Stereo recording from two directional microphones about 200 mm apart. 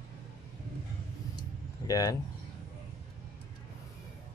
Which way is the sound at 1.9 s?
20° left (ahead or behind).